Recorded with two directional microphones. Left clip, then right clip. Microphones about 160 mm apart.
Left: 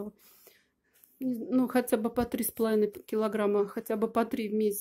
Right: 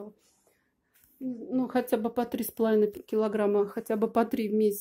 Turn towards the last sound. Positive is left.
turn(degrees=0)  # may be behind; listen again after turning